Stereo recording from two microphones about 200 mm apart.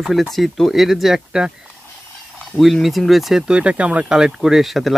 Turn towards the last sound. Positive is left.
turn(degrees=0)  # may be behind; listen again after turning